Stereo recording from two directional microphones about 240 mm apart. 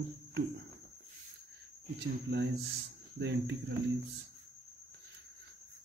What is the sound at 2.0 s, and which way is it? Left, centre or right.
Cricket, right.